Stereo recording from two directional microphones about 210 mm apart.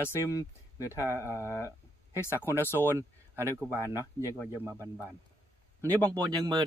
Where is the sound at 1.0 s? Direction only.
10° right (ahead or behind).